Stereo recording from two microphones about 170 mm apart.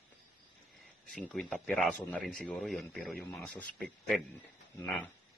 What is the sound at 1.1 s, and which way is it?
Speech, 5° left (ahead or behind).